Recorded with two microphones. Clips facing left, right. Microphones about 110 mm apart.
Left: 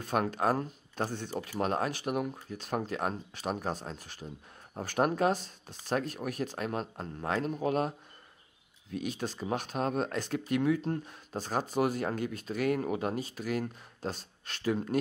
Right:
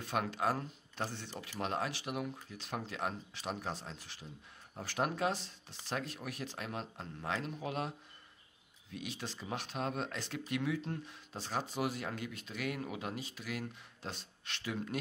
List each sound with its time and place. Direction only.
0.0 s speech: 45° left (ahead or behind)
8.9 s speech: 45° left (ahead or behind)